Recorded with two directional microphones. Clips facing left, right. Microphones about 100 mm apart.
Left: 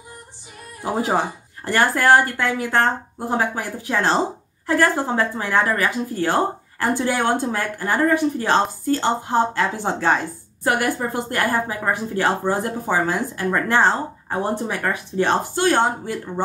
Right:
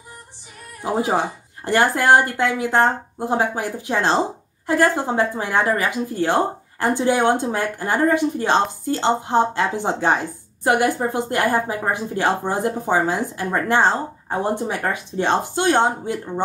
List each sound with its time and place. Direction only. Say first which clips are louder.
0.9 s a woman's voice: right 1 dB; 15° right (ahead or behind)